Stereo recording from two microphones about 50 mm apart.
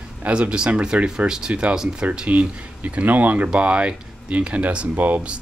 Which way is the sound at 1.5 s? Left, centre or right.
Right.